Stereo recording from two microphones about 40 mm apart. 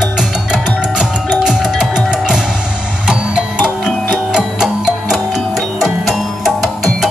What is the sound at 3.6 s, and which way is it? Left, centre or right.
Music, centre.